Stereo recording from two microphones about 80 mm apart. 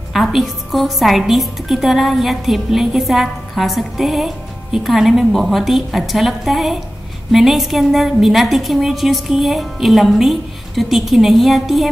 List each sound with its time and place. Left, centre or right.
0.1 s a woman's voice: centre